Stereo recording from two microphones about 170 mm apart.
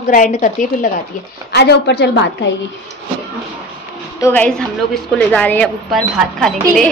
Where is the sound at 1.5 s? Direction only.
80° left.